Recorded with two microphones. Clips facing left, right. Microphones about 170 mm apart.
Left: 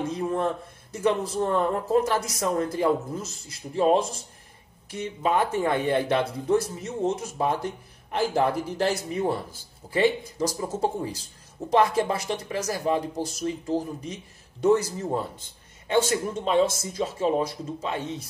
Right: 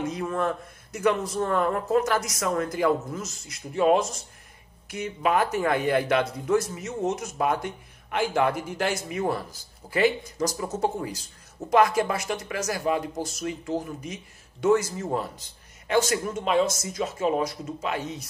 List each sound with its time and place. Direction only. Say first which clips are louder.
0.0 s a sound: left 1 dB; 30° left (ahead or behind)
0.9 s speech: even; 30° left (ahead or behind)
5.3 s a man's voice: even; 25° left (ahead or behind)
15.9 s speech: even; 30° left (ahead or behind)